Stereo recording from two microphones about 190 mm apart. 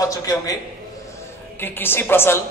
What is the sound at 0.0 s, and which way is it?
Speech, 20° left (ahead or behind).